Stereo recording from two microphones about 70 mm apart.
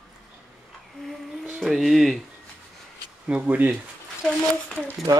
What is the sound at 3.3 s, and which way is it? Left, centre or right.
Speech, right.